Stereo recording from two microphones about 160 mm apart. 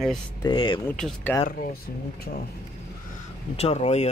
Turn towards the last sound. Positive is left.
turn(degrees=40)  # may be behind; listen again after turning